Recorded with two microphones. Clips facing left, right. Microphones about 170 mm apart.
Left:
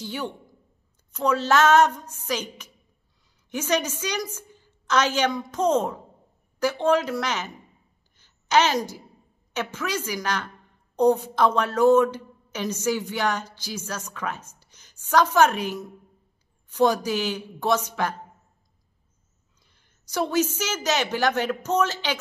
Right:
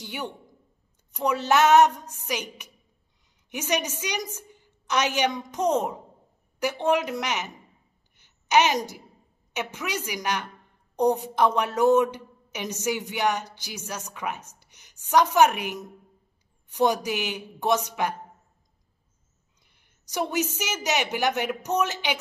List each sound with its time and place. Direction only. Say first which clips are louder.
0.0 s a man's voice: left 3 dB; 15° right (ahead or behind)
8.2 s a sound: even; 15° right (ahead or behind)
9.5 s a woman's voice: left 2 dB; 15° right (ahead or behind)
19.6 s a woman's voice: left 2 dB; 15° right (ahead or behind)